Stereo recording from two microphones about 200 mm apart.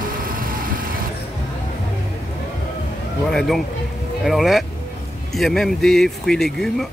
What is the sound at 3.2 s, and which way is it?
Speech, 5° left (ahead or behind).